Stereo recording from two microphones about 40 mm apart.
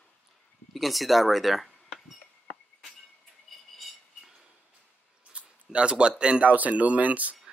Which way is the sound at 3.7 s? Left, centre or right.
Centre.